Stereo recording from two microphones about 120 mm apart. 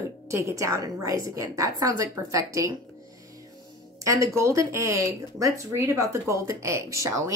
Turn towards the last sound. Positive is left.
turn(degrees=-25)  # may be behind; listen again after turning